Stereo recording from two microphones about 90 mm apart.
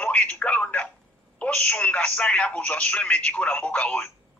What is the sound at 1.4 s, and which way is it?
Speech, 15° left (ahead or behind).